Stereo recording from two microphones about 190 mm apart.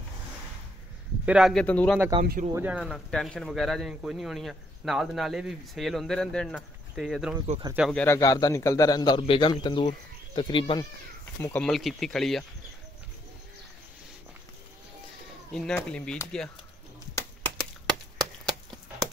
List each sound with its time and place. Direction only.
1.2 s speech: 5° right (ahead or behind)
2.5 s speech: 10° right (ahead or behind)
7.9 s a man's voice: 10° left (ahead or behind); by 10.9 s 25° left (ahead or behind)
11.4 s speech: 5° left (ahead or behind)
15.5 s speech: 5° left (ahead or behind)
17.6 s a sound: 5° left (ahead or behind)